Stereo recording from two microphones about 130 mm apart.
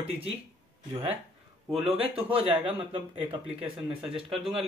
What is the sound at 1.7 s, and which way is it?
Speech, 45° right (ahead or behind).